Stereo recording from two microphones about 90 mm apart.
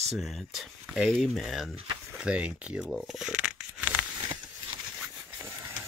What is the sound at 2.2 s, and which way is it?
Speech, 10° right (ahead or behind).